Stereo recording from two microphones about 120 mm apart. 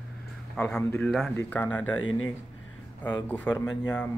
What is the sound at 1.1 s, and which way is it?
Speech, 5° left (ahead or behind).